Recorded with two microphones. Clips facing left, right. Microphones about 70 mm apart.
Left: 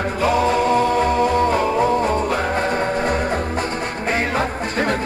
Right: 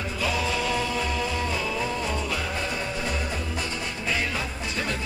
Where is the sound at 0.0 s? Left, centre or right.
Left.